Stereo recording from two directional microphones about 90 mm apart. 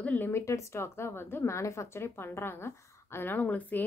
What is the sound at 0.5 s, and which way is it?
A woman's voice, 30° left (ahead or behind).